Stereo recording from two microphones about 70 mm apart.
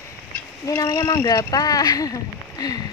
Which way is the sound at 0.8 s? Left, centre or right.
Left.